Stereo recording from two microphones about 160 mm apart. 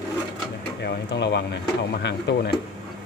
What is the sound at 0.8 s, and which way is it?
Speech, 90° left.